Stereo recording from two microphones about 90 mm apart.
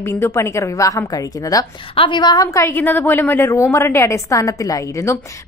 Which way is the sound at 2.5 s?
30° left (ahead or behind).